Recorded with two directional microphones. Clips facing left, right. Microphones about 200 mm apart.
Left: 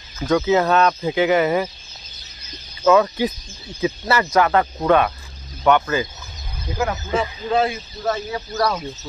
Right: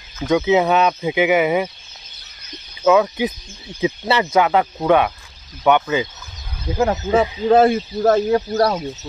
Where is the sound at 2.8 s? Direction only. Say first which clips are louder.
Right 1 dB; 10° right (ahead or behind).